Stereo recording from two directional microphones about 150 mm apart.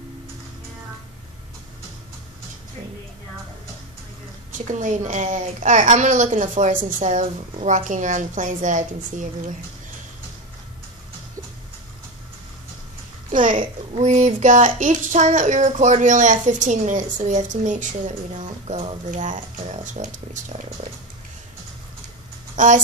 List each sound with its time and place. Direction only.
4.5 s speech: 55° right (ahead or behind)
13.3 s a child's voice: 60° right (ahead or behind)
22.6 s speech: 55° right (ahead or behind)